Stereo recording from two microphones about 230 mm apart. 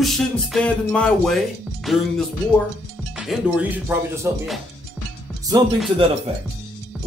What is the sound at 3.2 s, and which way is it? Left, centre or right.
Speech, centre.